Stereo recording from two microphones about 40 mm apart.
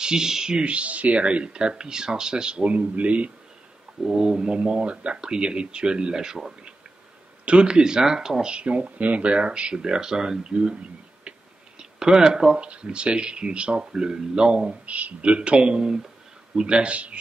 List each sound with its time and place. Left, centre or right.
0.0 s speech: centre; by 3.3 s right
4.0 s a sound: centre
4.6 s speech: right; by 6.4 s centre
7.4 s speech: right
8.0 s a sound: centre
8.5 s speech: right
11.8 s speech: centre
12.5 s speech: right
14.9 s speech: right
15.2 s speech: right